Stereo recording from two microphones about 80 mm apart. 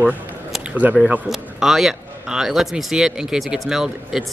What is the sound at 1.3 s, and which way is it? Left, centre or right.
A man's voice, centre.